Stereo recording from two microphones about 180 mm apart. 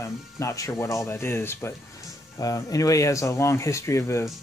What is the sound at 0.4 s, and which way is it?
Speech, 15° left (ahead or behind).